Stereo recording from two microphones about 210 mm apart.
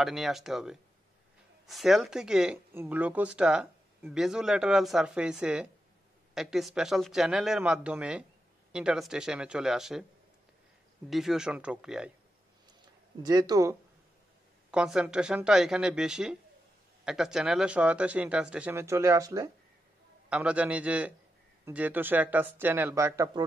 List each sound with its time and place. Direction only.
0.0 s speech: centre (ahead or behind)
11.1 s speech: centre (ahead or behind)
13.2 s speech: 20° right (ahead or behind)
14.7 s speech: 5° right (ahead or behind)